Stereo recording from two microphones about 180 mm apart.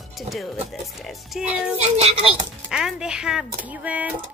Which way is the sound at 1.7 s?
35° right (ahead or behind).